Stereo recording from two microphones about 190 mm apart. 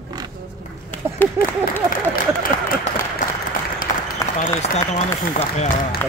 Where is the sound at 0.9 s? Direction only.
10° left (ahead or behind).